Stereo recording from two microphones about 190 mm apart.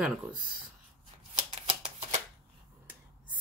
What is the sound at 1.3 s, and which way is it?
Shuffling cards, 35° right (ahead or behind).